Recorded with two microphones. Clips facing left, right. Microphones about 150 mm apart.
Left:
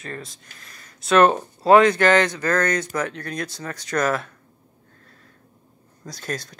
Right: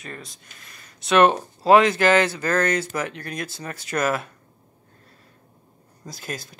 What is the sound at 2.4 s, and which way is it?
Speech, 25° right (ahead or behind).